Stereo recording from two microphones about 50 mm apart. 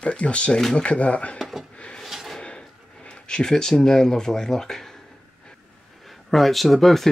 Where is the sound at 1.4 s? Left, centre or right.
Centre.